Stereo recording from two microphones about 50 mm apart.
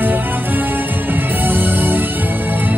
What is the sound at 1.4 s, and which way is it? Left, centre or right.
Music, right.